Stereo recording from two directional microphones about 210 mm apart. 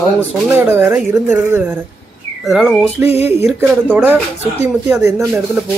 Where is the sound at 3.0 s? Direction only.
30° left (ahead or behind).